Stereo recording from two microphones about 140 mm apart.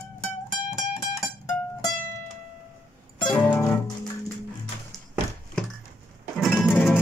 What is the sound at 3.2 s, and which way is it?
Music, 35° left (ahead or behind).